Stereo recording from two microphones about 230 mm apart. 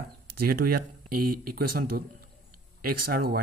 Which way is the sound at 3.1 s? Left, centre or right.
Right.